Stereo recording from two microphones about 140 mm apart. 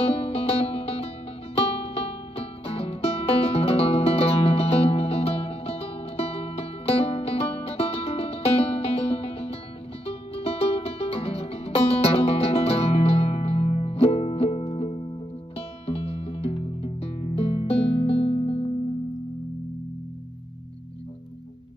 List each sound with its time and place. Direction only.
0.0 s music: 45° left (ahead or behind)